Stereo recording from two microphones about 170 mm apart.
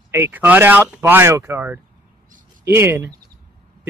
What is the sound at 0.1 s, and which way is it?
Speech, 15° right (ahead or behind).